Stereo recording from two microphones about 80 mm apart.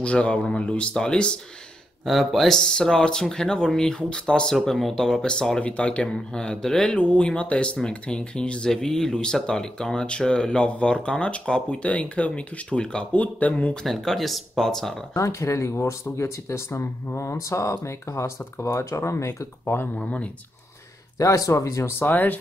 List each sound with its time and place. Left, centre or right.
0.0 s speech: centre
2.0 s speech: centre
13.8 s speech: centre
15.1 s speech: left
20.0 s speech: centre
21.2 s speech: left